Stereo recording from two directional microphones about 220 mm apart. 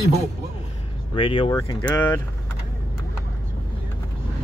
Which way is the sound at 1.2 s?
20° left (ahead or behind).